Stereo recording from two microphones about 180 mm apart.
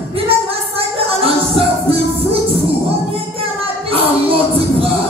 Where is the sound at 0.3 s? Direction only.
30° right (ahead or behind).